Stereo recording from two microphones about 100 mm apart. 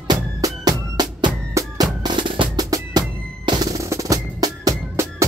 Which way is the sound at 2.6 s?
40° right (ahead or behind).